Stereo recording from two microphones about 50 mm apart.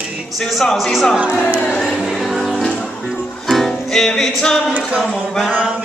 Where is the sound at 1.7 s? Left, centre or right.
Centre.